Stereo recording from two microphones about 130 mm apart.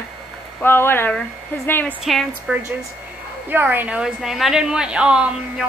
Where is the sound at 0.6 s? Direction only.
15° left (ahead or behind).